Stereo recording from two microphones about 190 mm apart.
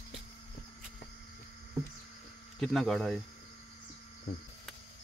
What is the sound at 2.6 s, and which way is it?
Speech, centre (ahead or behind).